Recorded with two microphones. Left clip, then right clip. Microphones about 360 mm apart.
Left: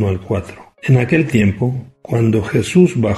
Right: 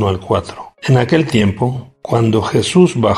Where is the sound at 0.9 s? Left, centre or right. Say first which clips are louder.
Right 2 dB; right.